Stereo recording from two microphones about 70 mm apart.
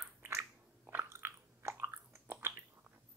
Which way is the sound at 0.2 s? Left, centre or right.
Right.